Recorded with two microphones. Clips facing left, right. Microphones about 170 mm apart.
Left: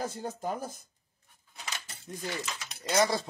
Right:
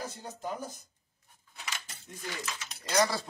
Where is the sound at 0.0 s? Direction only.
50° left (ahead or behind).